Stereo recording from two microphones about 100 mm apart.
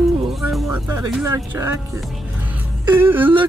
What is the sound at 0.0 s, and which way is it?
Music, centre (ahead or behind).